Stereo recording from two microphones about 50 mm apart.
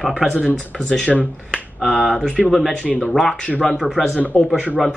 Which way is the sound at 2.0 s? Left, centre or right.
Centre.